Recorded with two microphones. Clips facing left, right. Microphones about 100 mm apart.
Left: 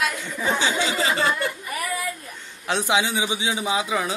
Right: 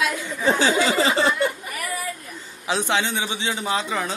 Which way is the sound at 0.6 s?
40° right (ahead or behind).